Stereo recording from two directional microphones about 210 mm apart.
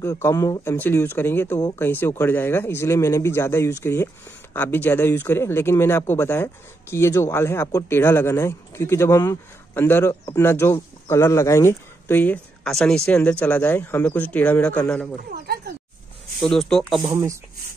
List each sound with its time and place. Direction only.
0.0 s speech: 15° left (ahead or behind)
15.1 s speech: 45° right (ahead or behind)
16.3 s speech: centre (ahead or behind)
17.0 s speech: 15° right (ahead or behind)